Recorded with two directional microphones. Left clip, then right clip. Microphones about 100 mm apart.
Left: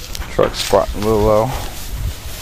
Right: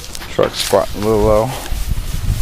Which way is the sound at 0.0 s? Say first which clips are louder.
Even; 10° right (ahead or behind).